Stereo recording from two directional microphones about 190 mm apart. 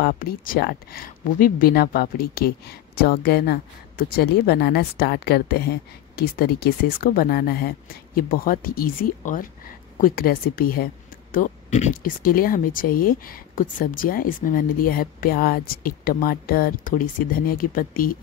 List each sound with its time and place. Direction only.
0.0 s a woman's voice: 50° left (ahead or behind)
11.3 s speech: 40° left (ahead or behind)